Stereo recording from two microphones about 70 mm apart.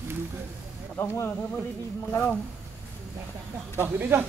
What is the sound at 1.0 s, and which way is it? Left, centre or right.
Speech, left.